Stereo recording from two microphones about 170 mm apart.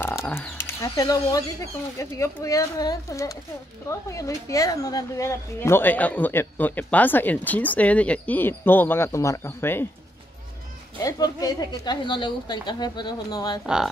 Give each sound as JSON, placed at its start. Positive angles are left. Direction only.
{"t": 0.0, "sound": "a woman's voice", "side_deg": 15}
{"t": 11.0, "sound": "a woman's voice", "side_deg": 20}